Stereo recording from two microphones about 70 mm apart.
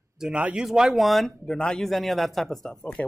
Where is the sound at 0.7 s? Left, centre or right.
Centre.